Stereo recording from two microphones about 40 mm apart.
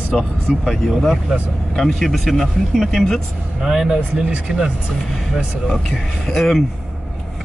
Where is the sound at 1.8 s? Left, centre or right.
Centre.